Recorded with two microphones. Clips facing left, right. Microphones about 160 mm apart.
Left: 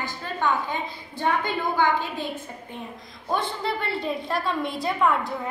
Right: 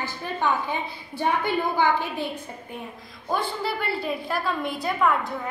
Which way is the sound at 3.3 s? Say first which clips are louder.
Even; 5° right (ahead or behind).